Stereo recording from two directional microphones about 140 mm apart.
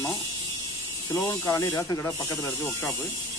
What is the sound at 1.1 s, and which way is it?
Speech, 20° left (ahead or behind).